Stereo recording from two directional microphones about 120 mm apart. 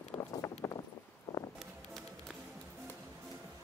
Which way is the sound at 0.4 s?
20° left (ahead or behind).